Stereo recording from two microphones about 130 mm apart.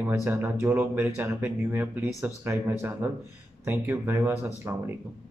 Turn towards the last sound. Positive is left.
turn(degrees=-20)  # may be behind; listen again after turning